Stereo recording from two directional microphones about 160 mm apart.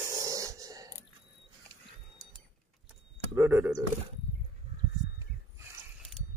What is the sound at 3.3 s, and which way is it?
Speech, 15° right (ahead or behind).